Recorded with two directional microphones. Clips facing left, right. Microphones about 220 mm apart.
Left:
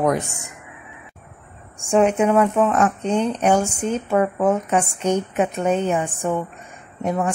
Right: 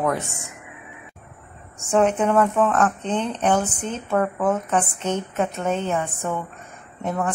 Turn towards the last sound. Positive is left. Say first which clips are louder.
# left 3 dB
turn(degrees=15)  # may be behind; listen again after turning